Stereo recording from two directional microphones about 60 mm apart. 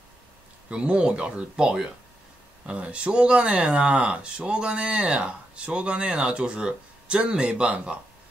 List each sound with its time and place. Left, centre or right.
0.7 s speech: centre